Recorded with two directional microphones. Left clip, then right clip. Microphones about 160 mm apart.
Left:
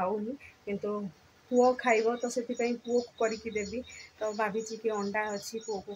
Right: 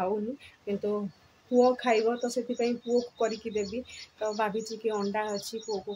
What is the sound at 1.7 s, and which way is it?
Speech, 20° right (ahead or behind).